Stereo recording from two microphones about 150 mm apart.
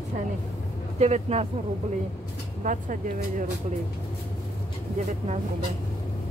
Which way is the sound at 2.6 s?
55° right (ahead or behind).